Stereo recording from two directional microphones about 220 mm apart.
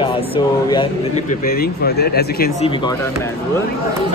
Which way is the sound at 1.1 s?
40° left (ahead or behind).